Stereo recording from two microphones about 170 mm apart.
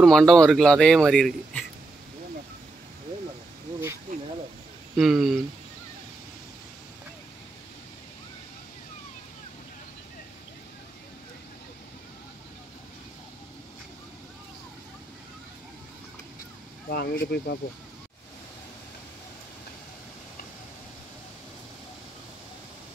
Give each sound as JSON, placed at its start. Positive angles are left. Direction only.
{"t": 0.0, "sound": "speech", "side_deg": 5}
{"t": 4.9, "sound": "speech", "side_deg": 0}
{"t": 16.9, "sound": "speech", "side_deg": 65}